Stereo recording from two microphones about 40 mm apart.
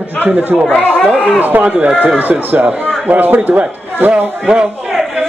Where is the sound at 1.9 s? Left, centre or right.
Right.